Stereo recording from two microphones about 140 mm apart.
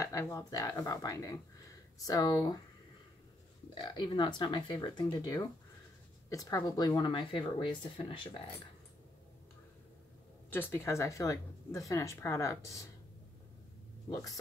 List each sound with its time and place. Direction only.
0.0 s speech: 20° left (ahead or behind)
3.7 s speech: 30° left (ahead or behind)
10.5 s speech: 15° left (ahead or behind)
14.1 s speech: 25° left (ahead or behind)